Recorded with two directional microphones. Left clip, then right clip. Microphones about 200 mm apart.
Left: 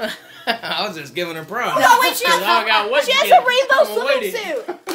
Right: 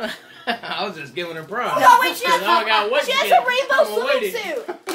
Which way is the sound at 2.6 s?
55° left (ahead or behind).